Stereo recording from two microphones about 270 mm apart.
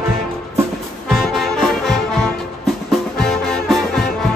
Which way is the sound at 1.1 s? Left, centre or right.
Centre.